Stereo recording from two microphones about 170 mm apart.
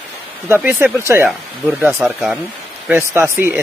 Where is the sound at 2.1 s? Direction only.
Centre (ahead or behind).